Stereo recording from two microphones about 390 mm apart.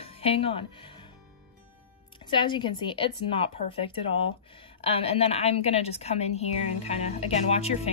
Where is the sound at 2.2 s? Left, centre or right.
Centre.